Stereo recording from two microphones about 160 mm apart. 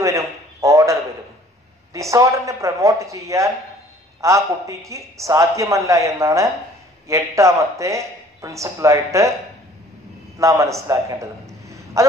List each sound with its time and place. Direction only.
0.0 s a sound: 20° right (ahead or behind)
2.0 s a man's voice: 20° right (ahead or behind)
10.4 s a man's voice: 20° right (ahead or behind)